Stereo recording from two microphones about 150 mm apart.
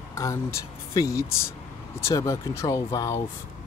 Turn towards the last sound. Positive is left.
turn(degrees=20)  # may be behind; listen again after turning